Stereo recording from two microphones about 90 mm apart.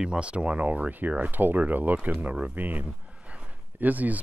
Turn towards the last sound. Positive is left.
turn(degrees=-15)  # may be behind; listen again after turning